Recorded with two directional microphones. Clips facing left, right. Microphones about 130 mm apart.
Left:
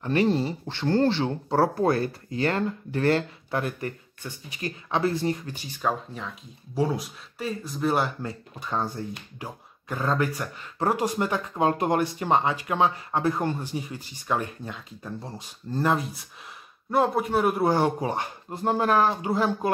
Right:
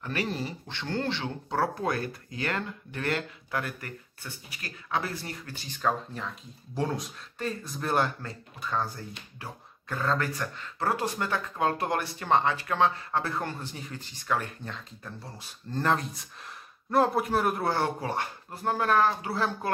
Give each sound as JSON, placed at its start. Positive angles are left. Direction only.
{"t": 0.0, "sound": "speech", "side_deg": 25}
{"t": 8.5, "sound": "a man's voice", "side_deg": 25}
{"t": 17.6, "sound": "speech", "side_deg": 15}